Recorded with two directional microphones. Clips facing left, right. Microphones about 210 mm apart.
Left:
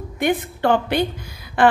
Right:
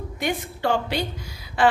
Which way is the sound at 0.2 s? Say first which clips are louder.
Left 6 dB; 55° left (ahead or behind).